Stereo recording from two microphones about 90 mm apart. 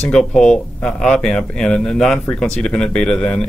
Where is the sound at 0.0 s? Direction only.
5° left (ahead or behind).